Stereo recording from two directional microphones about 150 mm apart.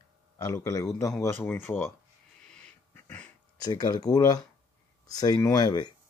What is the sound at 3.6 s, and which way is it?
Speech, 25° left (ahead or behind).